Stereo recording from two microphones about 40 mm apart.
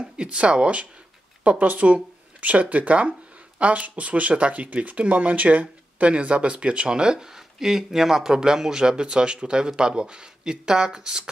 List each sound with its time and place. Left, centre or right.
0.0 s speech: right